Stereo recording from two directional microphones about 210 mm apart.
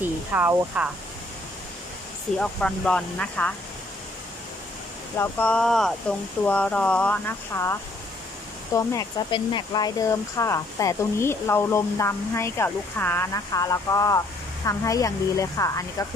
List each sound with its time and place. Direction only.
0.0 s speech: 10° right (ahead or behind)
2.3 s speech: 5° left (ahead or behind)
5.1 s speech: 10° left (ahead or behind)
8.7 s speech: 20° left (ahead or behind)